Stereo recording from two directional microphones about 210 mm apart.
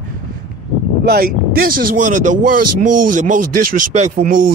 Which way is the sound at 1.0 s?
45° right (ahead or behind).